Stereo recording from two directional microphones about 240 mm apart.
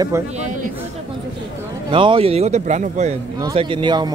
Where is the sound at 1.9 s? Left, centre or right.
Right.